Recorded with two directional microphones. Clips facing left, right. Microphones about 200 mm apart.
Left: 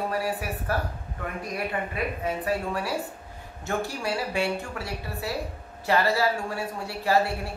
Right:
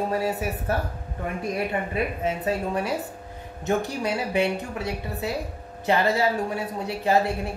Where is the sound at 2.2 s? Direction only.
20° right (ahead or behind).